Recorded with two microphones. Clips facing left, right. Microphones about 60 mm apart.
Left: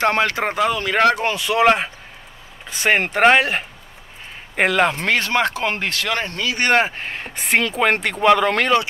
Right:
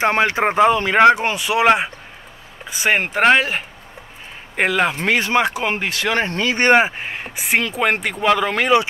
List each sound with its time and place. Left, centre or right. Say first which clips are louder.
0.0 s speech: right 2 dB; centre
4.9 s speech: right 2 dB; centre; by 6.7 s right
6.7 s speech: right 3 dB; centre